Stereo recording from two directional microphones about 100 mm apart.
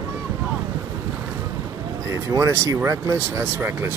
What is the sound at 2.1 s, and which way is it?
Speech, 30° right (ahead or behind).